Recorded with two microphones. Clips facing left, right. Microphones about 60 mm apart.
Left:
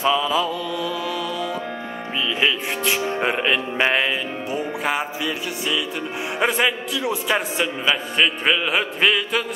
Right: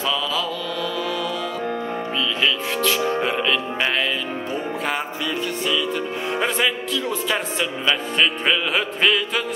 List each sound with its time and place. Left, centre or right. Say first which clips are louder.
0.0 s speech: left 4 dB; left
2.4 s music: even; left
3.1 s speech: even; left
4.5 s music: left 2 dB; centre
6.4 s a man's voice: left 3 dB; centre